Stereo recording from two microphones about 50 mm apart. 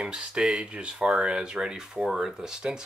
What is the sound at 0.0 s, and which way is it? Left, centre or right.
Speech, centre.